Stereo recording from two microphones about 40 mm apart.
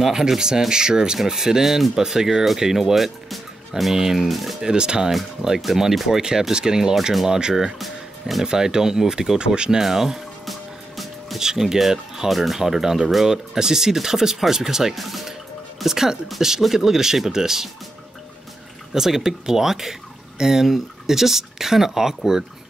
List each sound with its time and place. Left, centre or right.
0.0 s speech: centre
4.2 s speech: centre
4.6 s speech: centre
5.6 s speech: centre
7.8 s music: centre
8.5 s speech: centre
10.4 s music: centre
11.3 s speech: centre
12.3 s speech: centre
18.9 s speech: centre